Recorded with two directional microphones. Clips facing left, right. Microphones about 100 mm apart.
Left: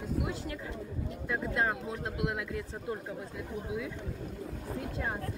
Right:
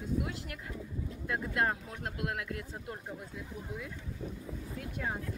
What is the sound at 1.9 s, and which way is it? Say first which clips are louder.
Speech: left 4 dB; 20° left (ahead or behind).